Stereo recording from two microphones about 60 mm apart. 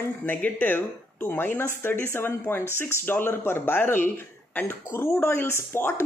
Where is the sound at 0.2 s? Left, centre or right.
Left.